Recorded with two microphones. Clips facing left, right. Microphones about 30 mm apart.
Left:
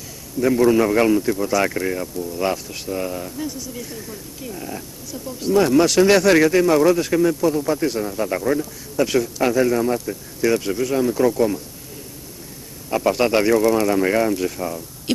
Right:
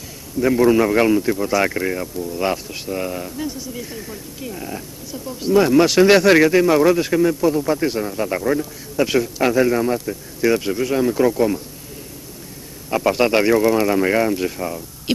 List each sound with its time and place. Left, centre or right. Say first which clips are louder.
0.4 s a man's voice: right 1 dB; centre
12.9 s a man's voice: right 1 dB; centre